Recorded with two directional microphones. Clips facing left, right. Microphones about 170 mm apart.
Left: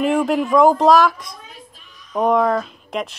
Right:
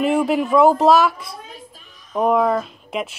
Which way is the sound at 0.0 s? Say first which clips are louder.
Even; centre (ahead or behind).